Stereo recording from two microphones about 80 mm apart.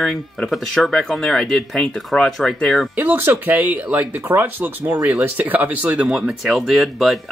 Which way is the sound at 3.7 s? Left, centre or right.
Right.